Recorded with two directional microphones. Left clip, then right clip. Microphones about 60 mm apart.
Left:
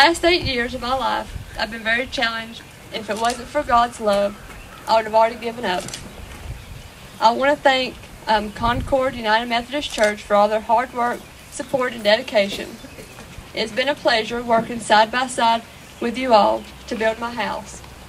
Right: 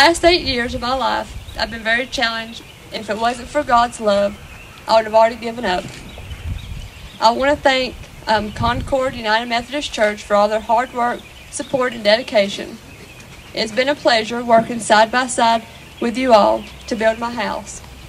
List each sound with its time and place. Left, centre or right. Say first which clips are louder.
0.0 s a woman's voice: right 3 dB; right
7.2 s a woman's voice: right 2 dB; centre
8.7 s a woman's voice: right 1 dB; centre